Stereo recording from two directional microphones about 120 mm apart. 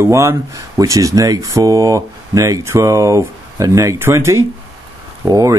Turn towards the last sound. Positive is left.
turn(degrees=-30)  # may be behind; listen again after turning